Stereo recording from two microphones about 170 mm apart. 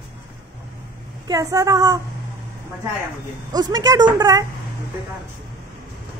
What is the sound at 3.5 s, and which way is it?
Speech, 25° right (ahead or behind).